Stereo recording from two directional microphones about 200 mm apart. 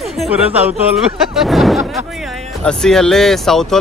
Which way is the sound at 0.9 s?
Centre (ahead or behind).